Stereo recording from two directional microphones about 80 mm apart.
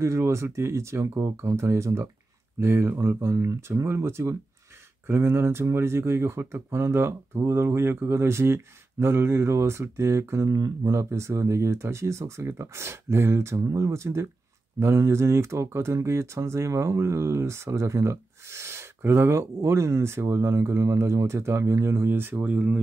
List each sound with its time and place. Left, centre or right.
0.0 s speech: right; by 22.8 s centre